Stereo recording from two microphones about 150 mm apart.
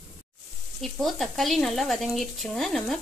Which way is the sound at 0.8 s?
Centre (ahead or behind).